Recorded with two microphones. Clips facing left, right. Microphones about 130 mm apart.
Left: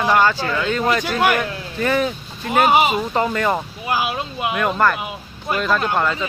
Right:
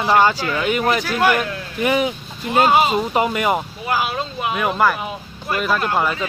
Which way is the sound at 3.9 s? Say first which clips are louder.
Even; 15° left (ahead or behind).